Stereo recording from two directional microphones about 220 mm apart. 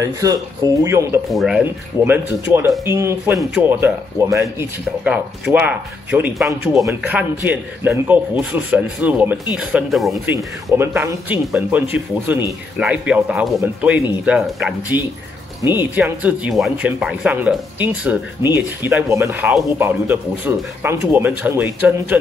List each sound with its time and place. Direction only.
0.0 s speech: 15° right (ahead or behind)
1.3 s speech: 5° right (ahead or behind)